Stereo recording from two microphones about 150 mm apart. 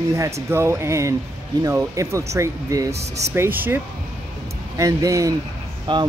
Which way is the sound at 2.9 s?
45° right (ahead or behind).